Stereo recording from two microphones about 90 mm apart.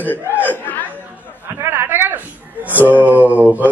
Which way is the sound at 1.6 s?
20° right (ahead or behind).